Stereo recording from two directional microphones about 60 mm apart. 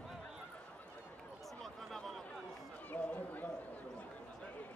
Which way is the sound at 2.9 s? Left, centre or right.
Left.